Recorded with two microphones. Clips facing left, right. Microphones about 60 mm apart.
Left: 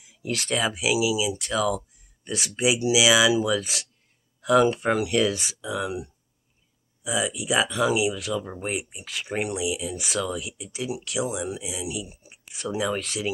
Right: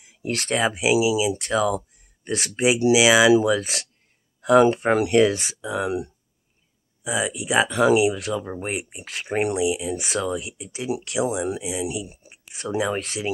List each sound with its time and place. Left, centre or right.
0.0 s speech: right